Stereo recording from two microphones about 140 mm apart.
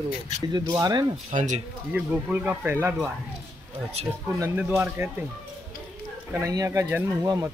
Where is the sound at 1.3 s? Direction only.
60° right (ahead or behind).